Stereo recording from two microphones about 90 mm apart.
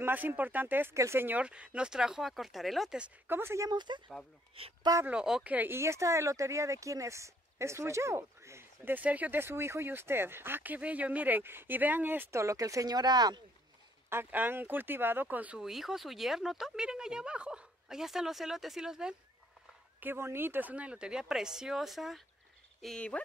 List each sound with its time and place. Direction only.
0.0 s speech: 20° right (ahead or behind); by 3.0 s centre (ahead or behind)
3.3 s speech: 25° right (ahead or behind)
3.7 s speech: 55° right (ahead or behind)
4.6 s speech: 90° right
5.0 s speech: 10° right (ahead or behind)
5.8 s speech: 35° right (ahead or behind); by 13.4 s 50° right (ahead or behind)
14.0 s speech: 25° right (ahead or behind); by 19.1 s 5° right (ahead or behind)
20.0 s speech: 25° right (ahead or behind); by 23.2 s 10° left (ahead or behind)